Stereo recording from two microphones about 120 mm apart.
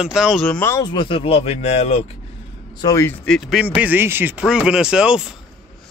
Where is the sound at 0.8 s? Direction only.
40° left (ahead or behind); by 2.0 s 60° left (ahead or behind).